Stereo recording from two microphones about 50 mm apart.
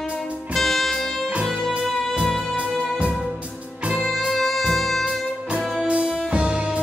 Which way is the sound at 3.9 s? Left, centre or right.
Centre.